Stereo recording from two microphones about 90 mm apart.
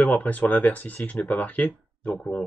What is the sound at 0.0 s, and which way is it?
Speech, 15° left (ahead or behind).